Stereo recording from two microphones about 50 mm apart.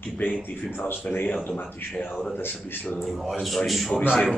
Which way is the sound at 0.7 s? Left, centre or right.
Left.